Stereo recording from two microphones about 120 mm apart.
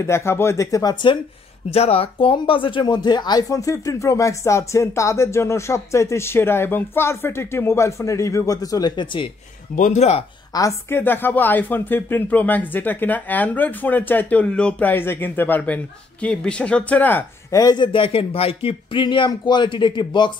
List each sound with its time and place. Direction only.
0.0 s speech: 20° left (ahead or behind)
1.7 s speech: 55° left (ahead or behind); by 9.3 s 40° left (ahead or behind)
9.8 s speech: 80° left
10.5 s speech: 35° left (ahead or behind)
10.9 s speech: 20° left (ahead or behind)
17.5 s speech: 30° left (ahead or behind)